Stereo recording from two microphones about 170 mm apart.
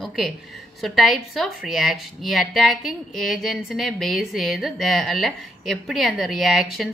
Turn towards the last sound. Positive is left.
turn(degrees=0)  # may be behind; listen again after turning